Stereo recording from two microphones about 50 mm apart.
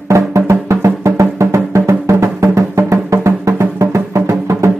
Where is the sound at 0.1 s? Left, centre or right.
Right.